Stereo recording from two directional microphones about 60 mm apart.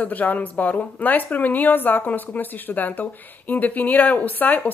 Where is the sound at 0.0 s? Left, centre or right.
Left.